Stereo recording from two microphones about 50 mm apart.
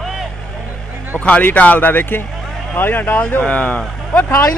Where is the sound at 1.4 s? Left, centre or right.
Left.